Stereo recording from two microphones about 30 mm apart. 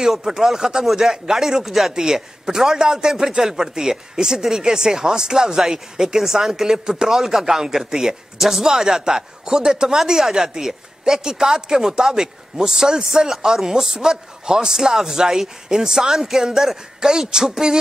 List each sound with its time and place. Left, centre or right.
0.0 s a man's voice: centre
3.1 s a man's voice: centre